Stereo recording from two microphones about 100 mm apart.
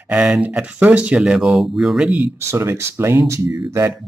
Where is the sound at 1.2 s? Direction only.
5° right (ahead or behind).